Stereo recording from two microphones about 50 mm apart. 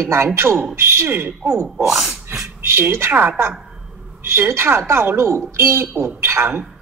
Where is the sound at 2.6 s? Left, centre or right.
Right.